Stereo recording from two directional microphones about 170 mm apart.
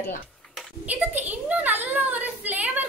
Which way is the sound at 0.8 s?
10° right (ahead or behind).